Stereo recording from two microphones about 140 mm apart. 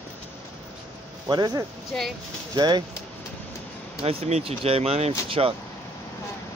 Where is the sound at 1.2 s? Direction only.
30° right (ahead or behind).